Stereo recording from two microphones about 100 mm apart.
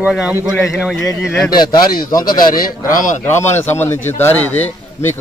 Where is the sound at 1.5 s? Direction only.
45° left (ahead or behind).